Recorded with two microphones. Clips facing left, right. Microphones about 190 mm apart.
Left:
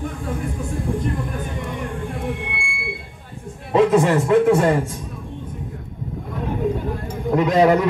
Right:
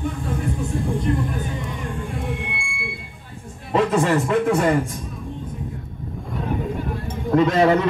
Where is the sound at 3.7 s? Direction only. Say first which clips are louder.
Left 3 dB; 20° left (ahead or behind).